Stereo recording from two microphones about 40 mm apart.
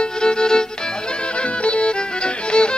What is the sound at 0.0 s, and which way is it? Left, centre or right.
Music, left.